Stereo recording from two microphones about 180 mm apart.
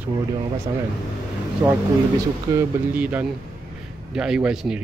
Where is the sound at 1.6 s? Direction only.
20° right (ahead or behind).